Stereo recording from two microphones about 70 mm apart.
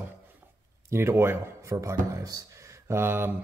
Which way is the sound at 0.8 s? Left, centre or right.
Right.